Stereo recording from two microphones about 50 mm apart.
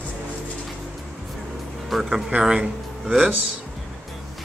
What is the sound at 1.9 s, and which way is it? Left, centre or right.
Speech, centre.